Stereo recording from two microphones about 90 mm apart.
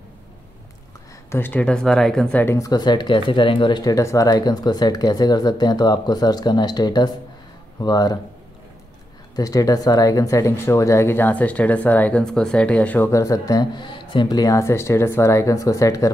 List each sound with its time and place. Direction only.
1.3 s speech: 20° left (ahead or behind)
2.5 s speech: 45° left (ahead or behind); by 3.8 s 65° left (ahead or behind)
3.8 s speech: 35° left (ahead or behind)
9.3 s speech: 40° left (ahead or behind); by 13.1 s 20° left (ahead or behind)
13.1 s speech: 40° left (ahead or behind)
13.7 s speech: 65° left (ahead or behind); by 16.1 s 35° left (ahead or behind)